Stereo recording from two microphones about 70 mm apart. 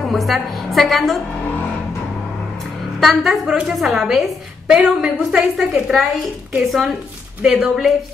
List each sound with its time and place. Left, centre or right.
0.0 s a woman's voice: centre
3.0 s a woman's voice: centre